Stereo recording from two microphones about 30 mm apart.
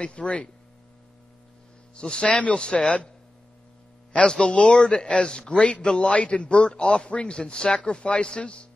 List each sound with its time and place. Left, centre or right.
0.0 s a man's voice: left
2.0 s a man's voice: left
4.2 s a man's voice: left
5.5 s a man's voice: left